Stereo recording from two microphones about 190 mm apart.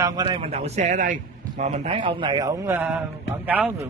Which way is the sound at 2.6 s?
10° right (ahead or behind).